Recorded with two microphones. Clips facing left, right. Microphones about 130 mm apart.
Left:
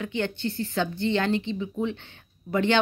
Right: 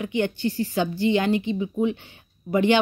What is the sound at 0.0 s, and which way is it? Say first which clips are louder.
Speech: right 4 dB; 15° right (ahead or behind).